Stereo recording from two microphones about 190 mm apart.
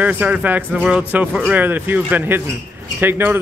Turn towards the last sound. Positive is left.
turn(degrees=-10)  # may be behind; listen again after turning